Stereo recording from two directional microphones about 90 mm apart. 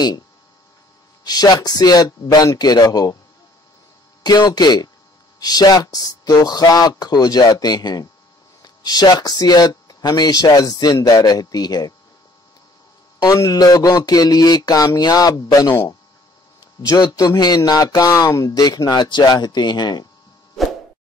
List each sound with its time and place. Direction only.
1.2 s speech: 45° left (ahead or behind)
4.2 s speech: 50° left (ahead or behind)
13.2 s speech: 45° left (ahead or behind)
16.8 s speech: 45° left (ahead or behind)